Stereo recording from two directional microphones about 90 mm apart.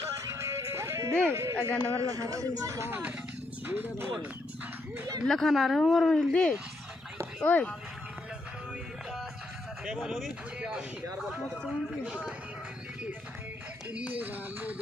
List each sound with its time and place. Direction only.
0.3 s music: 30° right (ahead or behind)
1.3 s speech: 30° right (ahead or behind)
1.7 s speech: 20° left (ahead or behind)
2.0 s speech: 40° right (ahead or behind)
2.9 s speech: 15° right (ahead or behind)
5.2 s speech: 5° left (ahead or behind)
9.8 s speech: 5° right (ahead or behind)
12.0 s speech: 10° right (ahead or behind)
13.9 s speech: 15° right (ahead or behind)